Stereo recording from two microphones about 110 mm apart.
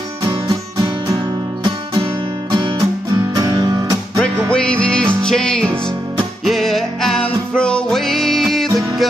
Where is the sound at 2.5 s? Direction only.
45° right (ahead or behind).